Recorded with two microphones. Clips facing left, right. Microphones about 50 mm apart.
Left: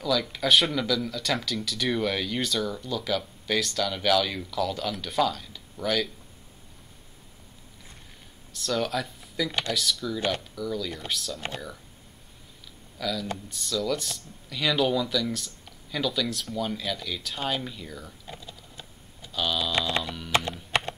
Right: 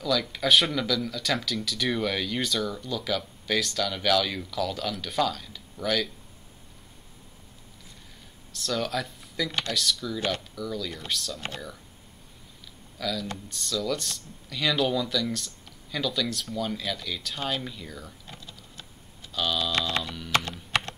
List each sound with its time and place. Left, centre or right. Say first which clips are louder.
0.0 s speech: even; centre
8.5 s speech: left 1 dB; centre
13.0 s speech: left 1 dB; centre
20.2 s computer keyboard: even; centre